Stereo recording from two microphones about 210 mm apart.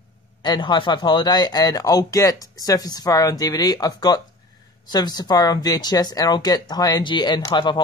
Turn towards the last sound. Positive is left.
turn(degrees=20)  # may be behind; listen again after turning